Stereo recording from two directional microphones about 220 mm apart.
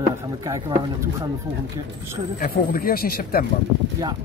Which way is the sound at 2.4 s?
40° left (ahead or behind).